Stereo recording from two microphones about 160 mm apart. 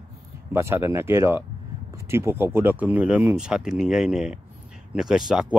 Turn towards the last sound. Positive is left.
turn(degrees=-5)  # may be behind; listen again after turning